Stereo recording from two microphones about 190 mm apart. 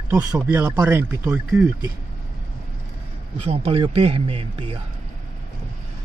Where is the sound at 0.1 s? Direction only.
15° right (ahead or behind).